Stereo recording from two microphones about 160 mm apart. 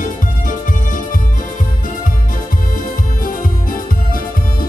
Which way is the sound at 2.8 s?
60° left (ahead or behind).